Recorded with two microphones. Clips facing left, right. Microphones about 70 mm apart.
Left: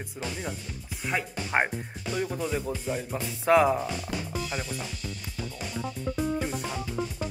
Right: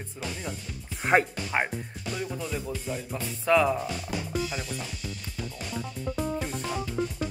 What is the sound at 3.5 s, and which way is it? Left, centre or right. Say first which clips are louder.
Speech: left 2 dB; left.